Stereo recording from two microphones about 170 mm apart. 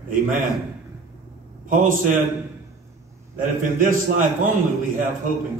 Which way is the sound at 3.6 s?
55° right (ahead or behind).